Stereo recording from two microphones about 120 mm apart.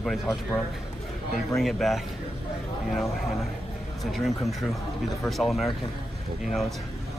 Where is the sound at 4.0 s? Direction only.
Centre (ahead or behind).